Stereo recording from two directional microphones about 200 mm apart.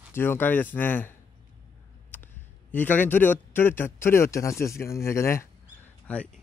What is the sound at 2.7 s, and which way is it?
A man's voice, 10° left (ahead or behind).